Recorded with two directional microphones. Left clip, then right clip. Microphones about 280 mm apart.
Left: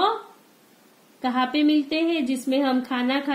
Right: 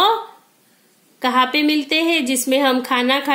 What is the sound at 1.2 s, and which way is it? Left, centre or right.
A woman's voice, centre.